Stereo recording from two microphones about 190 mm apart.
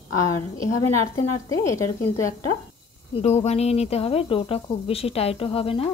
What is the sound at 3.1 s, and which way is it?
Speech, 35° left (ahead or behind).